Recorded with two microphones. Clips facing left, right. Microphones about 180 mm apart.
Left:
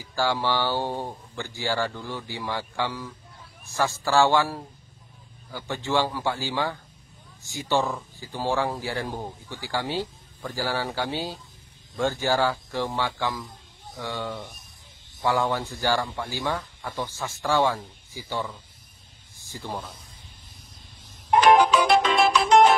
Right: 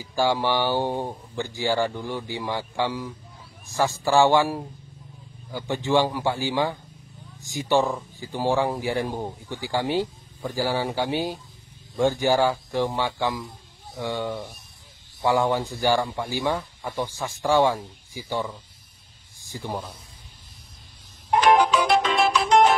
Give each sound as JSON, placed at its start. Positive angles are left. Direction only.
{"t": 0.0, "sound": "speech", "side_deg": -15}
{"t": 19.3, "sound": "a sound", "side_deg": -15}
{"t": 21.8, "sound": "music", "side_deg": 90}